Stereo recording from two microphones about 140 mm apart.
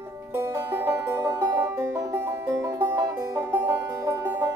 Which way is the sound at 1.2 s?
30° right (ahead or behind).